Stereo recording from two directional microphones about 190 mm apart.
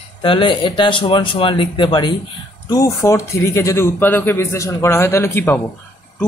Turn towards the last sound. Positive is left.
turn(degrees=10)  # may be behind; listen again after turning